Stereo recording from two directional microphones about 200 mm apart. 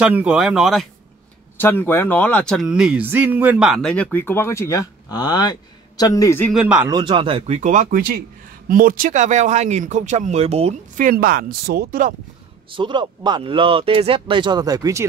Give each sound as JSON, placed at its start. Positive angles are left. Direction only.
{"t": 0.0, "sound": "speech", "side_deg": -5}
{"t": 1.6, "sound": "speech", "side_deg": 10}
{"t": 6.5, "sound": "speech", "side_deg": -5}
{"t": 6.9, "sound": "speech", "side_deg": -25}
{"t": 12.7, "sound": "speech", "side_deg": -25}